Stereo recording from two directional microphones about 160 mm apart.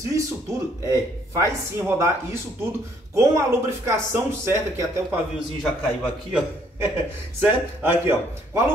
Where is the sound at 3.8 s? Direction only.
15° right (ahead or behind).